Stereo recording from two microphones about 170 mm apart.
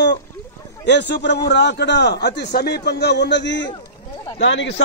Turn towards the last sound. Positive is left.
turn(degrees=90)